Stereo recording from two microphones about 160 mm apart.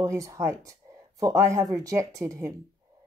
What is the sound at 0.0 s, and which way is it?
Speech, 20° right (ahead or behind).